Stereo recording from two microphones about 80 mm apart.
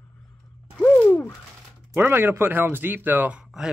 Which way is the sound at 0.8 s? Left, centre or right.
Centre.